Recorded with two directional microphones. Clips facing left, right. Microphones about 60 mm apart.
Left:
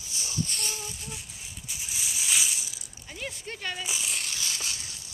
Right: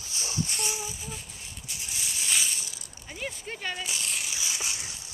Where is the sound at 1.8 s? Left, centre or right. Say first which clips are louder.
Even; centre.